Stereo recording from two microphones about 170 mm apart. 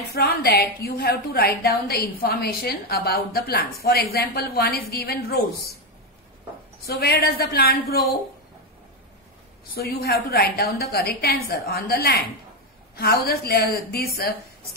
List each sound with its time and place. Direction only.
0.1 s a woman's voice: 65° left (ahead or behind)
6.9 s a woman's voice: 65° left (ahead or behind)
9.8 s a woman's voice: 65° left (ahead or behind)